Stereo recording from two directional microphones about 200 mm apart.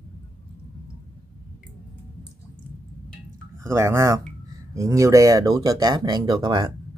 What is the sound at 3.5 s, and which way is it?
Speech, 15° right (ahead or behind).